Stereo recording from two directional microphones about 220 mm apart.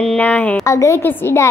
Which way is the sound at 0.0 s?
5° left (ahead or behind).